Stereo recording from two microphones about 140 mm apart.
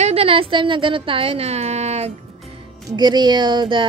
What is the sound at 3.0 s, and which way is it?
Speech, 30° right (ahead or behind).